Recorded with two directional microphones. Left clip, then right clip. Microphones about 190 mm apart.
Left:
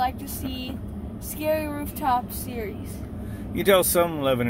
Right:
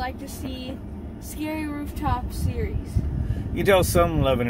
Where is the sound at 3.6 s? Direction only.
5° right (ahead or behind).